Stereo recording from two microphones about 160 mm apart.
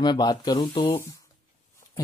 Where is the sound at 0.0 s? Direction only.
25° left (ahead or behind).